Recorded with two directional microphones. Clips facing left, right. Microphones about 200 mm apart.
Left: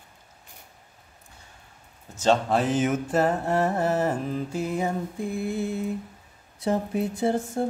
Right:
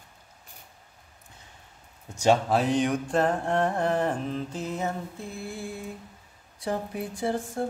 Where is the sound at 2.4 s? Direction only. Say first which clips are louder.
Left 1 dB; centre (ahead or behind).